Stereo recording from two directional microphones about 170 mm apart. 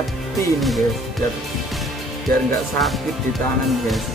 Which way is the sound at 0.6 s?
Centre (ahead or behind).